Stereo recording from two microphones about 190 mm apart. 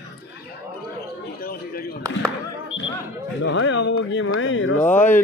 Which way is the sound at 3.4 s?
90° left.